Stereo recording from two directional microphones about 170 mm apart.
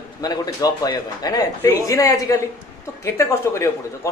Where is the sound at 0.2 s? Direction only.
25° left (ahead or behind).